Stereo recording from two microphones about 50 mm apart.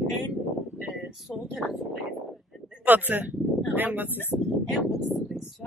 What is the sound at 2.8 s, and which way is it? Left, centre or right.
Speech, right.